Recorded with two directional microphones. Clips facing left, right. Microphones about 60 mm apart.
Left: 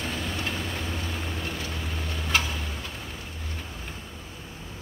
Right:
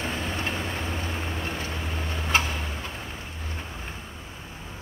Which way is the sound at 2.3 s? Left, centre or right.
Right.